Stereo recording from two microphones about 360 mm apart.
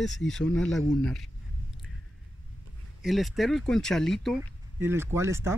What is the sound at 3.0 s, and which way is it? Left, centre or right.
Speech, centre.